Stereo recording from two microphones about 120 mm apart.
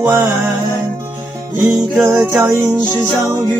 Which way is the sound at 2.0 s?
20° right (ahead or behind).